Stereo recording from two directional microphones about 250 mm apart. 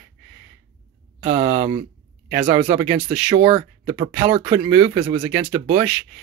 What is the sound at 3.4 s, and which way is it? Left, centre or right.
Speech, right.